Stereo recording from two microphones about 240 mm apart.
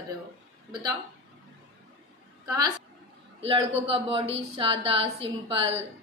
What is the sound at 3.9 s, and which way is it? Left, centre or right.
A woman's voice, right.